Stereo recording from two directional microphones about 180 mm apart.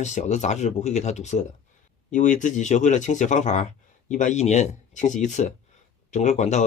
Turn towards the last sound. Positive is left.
turn(degrees=40)  # may be behind; listen again after turning